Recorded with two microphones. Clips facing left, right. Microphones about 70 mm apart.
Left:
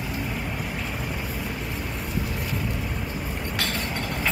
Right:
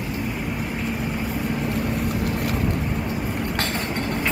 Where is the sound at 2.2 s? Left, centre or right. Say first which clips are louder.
Right 6 dB; right.